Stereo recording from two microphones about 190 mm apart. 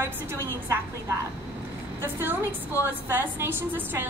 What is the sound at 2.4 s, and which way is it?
Speech, 15° left (ahead or behind).